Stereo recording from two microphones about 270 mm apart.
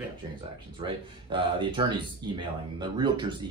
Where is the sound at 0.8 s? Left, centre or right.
Centre.